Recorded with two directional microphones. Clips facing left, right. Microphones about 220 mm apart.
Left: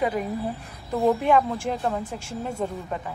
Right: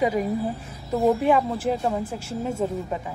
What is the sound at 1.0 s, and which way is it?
Speech, 5° right (ahead or behind).